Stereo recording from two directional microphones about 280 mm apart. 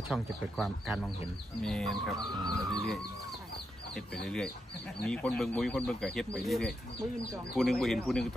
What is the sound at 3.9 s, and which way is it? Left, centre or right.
Speech, centre.